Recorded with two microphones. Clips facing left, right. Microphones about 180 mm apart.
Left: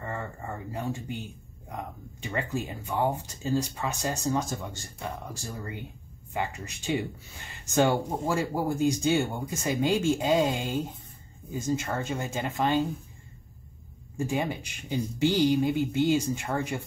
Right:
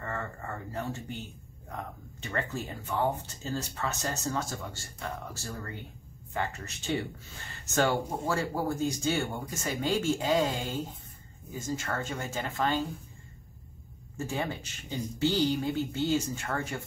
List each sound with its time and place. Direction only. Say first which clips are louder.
0.0 s speech: left 1 dB; 15° left (ahead or behind)
14.1 s speech: left 4 dB; 15° left (ahead or behind)